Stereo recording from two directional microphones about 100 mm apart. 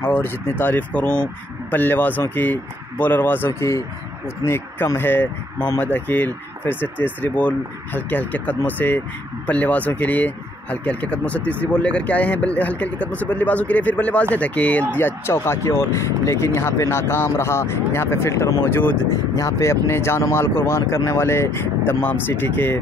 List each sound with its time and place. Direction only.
0.0 s speech: 20° left (ahead or behind)
19.0 s speech: 35° left (ahead or behind)